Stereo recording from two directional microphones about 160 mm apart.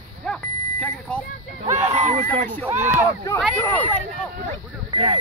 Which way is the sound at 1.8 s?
40° right (ahead or behind).